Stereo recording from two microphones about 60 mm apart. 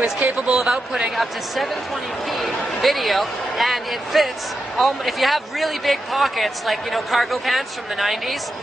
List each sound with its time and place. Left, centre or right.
0.0 s speech: centre
0.6 s speech: centre